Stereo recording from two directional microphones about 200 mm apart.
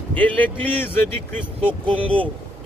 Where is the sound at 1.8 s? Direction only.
25° right (ahead or behind).